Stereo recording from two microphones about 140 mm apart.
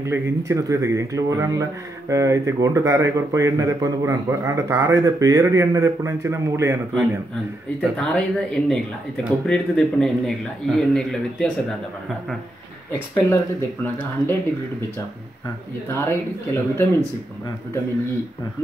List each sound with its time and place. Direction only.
0.0 s speech: 20° right (ahead or behind)
7.8 s a man's voice: 5° left (ahead or behind)
13.1 s speech: 15° left (ahead or behind)
15.4 s speech: 20° left (ahead or behind)